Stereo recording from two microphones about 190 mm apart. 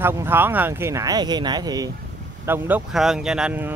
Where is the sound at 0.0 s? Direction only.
10° right (ahead or behind).